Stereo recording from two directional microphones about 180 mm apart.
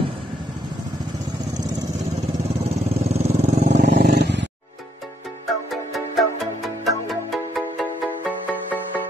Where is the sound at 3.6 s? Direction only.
55° right (ahead or behind).